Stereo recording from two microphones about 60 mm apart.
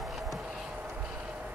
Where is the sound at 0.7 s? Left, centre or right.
Right.